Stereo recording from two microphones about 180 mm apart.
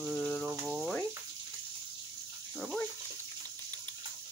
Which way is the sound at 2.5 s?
Centre (ahead or behind).